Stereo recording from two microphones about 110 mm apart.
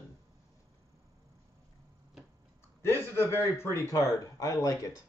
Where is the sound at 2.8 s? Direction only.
20° left (ahead or behind).